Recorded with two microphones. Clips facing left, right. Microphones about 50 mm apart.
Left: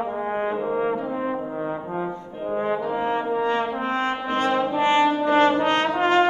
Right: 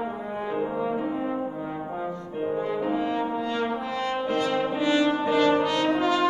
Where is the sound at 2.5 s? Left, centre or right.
Left.